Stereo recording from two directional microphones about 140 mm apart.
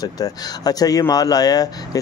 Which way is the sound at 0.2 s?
25° left (ahead or behind).